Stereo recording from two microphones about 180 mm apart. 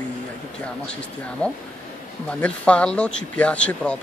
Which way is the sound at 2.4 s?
5° left (ahead or behind).